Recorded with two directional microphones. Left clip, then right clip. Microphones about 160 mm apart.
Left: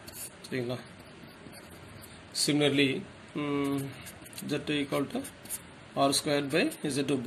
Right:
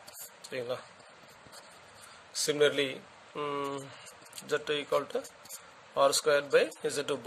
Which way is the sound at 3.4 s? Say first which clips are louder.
Left 3 dB; 70° right (ahead or behind).